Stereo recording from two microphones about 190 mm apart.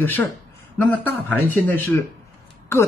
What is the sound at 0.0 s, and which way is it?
Speech, 10° left (ahead or behind).